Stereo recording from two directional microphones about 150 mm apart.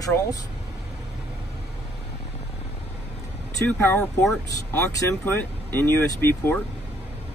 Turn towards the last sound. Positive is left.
turn(degrees=15)  # may be behind; listen again after turning